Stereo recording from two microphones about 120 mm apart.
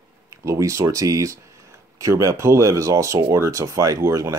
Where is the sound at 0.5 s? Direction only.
25° right (ahead or behind).